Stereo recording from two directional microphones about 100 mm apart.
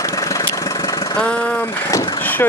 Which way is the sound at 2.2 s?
20° left (ahead or behind).